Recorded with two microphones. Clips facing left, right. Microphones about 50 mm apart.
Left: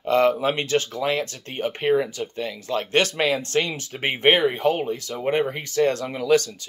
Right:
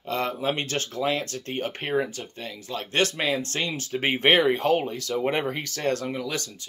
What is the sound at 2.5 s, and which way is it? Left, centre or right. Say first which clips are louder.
Speech: left 3 dB; left.